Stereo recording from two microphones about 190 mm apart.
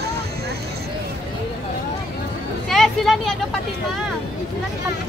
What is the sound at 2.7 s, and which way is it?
Speech, centre (ahead or behind).